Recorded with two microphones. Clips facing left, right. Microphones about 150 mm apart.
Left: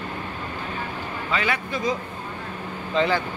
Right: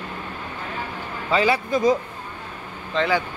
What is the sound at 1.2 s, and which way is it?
Speech, 35° right (ahead or behind).